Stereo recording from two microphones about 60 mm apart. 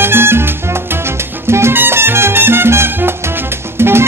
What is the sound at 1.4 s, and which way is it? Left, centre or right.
Music, right.